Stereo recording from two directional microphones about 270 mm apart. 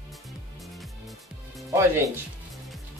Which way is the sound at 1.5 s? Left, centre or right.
Centre.